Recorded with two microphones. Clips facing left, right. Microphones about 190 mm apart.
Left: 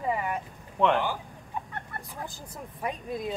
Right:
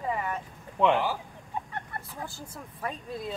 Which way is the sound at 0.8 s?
5° right (ahead or behind).